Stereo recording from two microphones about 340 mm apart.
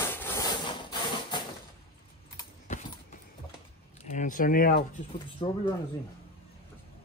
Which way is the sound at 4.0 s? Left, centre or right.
Left.